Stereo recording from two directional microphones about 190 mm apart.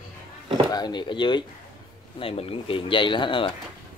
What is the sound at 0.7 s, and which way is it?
Speech, 20° left (ahead or behind).